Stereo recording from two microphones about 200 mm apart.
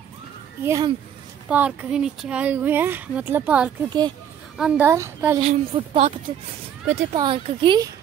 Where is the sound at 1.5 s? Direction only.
5° right (ahead or behind).